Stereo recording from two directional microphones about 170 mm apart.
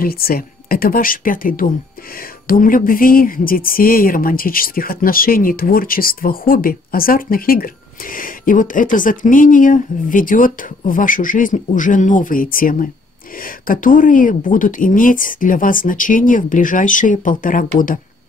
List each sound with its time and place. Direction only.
0.0 s a woman's voice: 60° left (ahead or behind)